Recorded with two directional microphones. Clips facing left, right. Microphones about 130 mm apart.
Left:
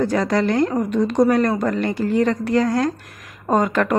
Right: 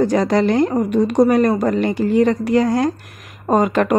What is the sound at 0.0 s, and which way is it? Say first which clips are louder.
A woman's voice: right 3 dB; 20° right (ahead or behind).